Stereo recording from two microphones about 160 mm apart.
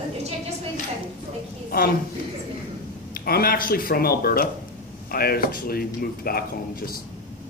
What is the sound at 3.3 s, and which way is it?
Speech, 70° left (ahead or behind).